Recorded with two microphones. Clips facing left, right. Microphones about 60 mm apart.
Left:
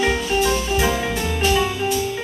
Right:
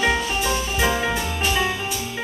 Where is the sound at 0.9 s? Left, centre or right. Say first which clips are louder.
Left 1 dB; centre.